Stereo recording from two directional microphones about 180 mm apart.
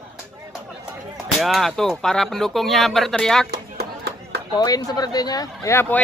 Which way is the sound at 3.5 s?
65° right (ahead or behind).